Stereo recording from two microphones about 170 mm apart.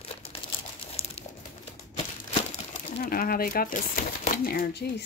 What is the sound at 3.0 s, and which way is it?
Speech, 60° left (ahead or behind).